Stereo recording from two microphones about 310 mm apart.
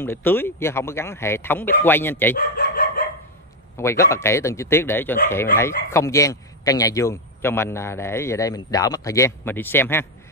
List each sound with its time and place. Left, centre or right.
0.0 s a man's voice: centre
2.3 s chicken: left
3.7 s a man's voice: centre